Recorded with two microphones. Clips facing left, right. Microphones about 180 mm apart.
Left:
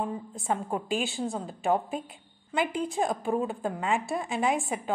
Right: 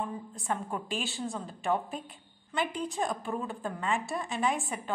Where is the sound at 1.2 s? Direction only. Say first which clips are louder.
Left 4 dB; 25° left (ahead or behind).